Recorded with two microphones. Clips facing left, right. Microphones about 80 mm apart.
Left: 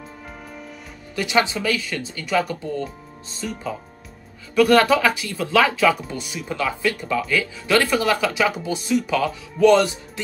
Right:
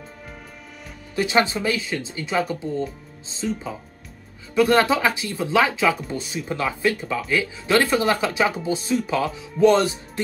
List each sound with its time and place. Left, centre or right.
1.1 s speech: right
4.6 s speech: right
6.1 s speech: right